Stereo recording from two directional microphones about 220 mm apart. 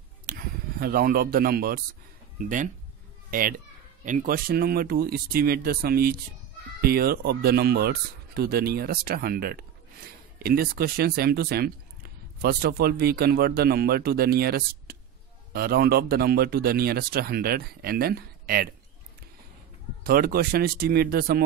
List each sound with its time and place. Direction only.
0.3 s a child's voice: 45° right (ahead or behind)
20.0 s speech: 40° right (ahead or behind)